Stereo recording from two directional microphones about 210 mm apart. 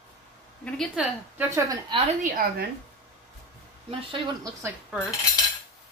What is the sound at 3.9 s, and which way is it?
Speech, 25° right (ahead or behind).